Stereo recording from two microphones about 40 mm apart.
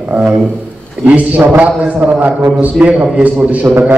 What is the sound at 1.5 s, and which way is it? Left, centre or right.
A man's voice, right.